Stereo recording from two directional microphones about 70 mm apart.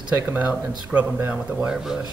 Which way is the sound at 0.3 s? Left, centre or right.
Centre.